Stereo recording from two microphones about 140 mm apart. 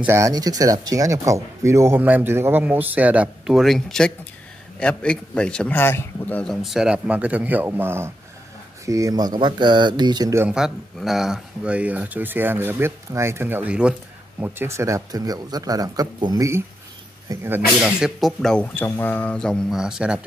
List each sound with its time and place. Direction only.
0.0 s a man's voice: 20° right (ahead or behind)
10.5 s speech: 5° right (ahead or behind)
17.7 s a man's voice: 5° right (ahead or behind)